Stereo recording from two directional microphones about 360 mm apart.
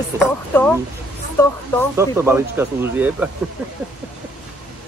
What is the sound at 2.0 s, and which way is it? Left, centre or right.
Speech, centre.